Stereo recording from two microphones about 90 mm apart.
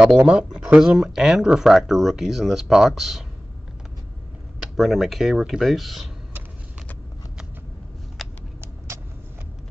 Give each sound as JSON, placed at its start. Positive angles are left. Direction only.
{"t": 0.0, "sound": "speech", "side_deg": -10}
{"t": 4.7, "sound": "speech", "side_deg": 0}
{"t": 8.2, "sound": "shuffling cards", "side_deg": 0}
{"t": 8.5, "sound": "vehicle", "side_deg": -30}